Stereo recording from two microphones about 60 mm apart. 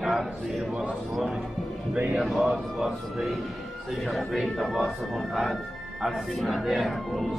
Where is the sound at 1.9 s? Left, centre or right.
Right.